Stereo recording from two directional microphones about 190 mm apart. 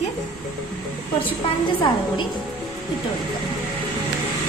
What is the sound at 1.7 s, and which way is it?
Speech, 25° left (ahead or behind).